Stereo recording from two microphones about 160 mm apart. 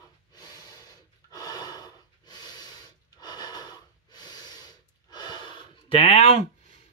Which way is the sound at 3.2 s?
25° left (ahead or behind).